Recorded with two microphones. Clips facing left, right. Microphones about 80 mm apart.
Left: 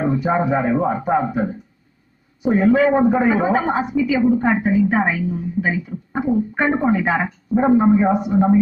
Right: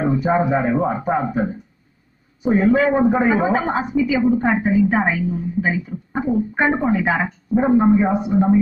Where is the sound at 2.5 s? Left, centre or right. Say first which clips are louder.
Left 1 dB; right.